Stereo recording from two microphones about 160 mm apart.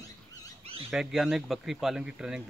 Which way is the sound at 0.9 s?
Centre (ahead or behind).